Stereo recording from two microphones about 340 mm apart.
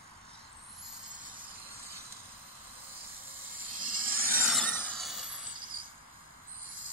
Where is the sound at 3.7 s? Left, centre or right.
Right.